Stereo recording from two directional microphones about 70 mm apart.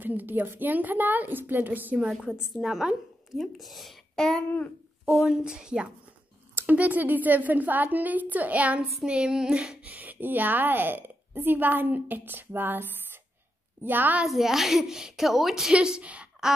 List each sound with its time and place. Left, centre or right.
0.0 s a woman's voice: right
2.0 s a woman's voice: centre
5.4 s a woman's voice: centre
6.5 s a woman's voice: right; by 9.8 s centre
9.8 s a woman's voice: right
13.8 s a woman's voice: right
14.2 s a woman's voice: centre